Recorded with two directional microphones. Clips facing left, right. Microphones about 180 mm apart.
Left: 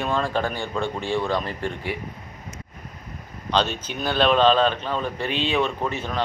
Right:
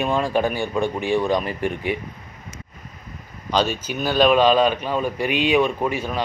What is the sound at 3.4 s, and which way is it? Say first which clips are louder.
A man's voice: right 2 dB; 10° right (ahead or behind).